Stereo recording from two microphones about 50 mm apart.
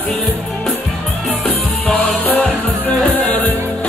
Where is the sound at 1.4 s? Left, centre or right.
Left.